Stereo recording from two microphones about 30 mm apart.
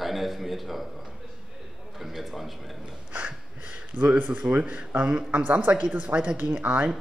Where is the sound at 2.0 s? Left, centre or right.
Centre.